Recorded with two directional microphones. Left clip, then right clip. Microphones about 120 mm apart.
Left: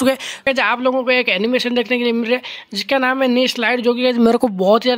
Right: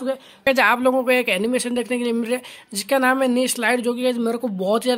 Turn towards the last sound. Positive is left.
turn(degrees=5)  # may be behind; listen again after turning